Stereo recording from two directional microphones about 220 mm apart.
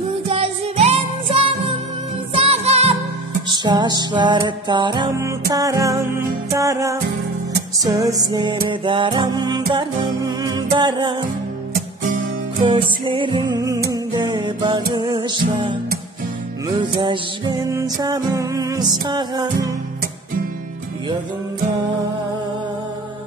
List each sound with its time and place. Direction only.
0.3 s music: 25° right (ahead or behind)
12.6 s music: 20° right (ahead or behind)